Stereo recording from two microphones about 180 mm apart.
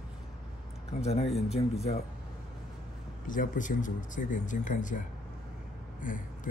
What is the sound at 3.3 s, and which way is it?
Speech, 45° left (ahead or behind).